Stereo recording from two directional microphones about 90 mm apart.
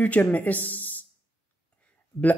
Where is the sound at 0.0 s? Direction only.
15° left (ahead or behind).